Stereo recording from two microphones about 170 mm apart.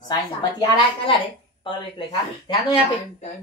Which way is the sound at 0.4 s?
25° left (ahead or behind).